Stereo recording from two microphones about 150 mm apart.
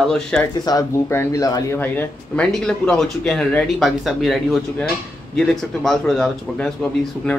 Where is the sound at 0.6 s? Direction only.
25° left (ahead or behind).